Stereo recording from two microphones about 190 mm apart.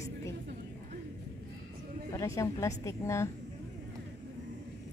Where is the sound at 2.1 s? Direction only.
15° left (ahead or behind).